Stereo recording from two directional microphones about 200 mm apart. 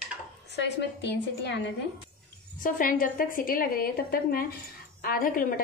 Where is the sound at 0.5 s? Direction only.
60° left (ahead or behind).